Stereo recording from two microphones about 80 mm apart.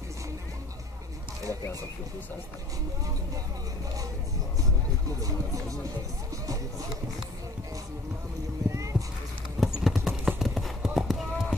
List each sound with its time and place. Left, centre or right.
5.2 s speech: right
8.6 s music: right
9.6 s a sound: centre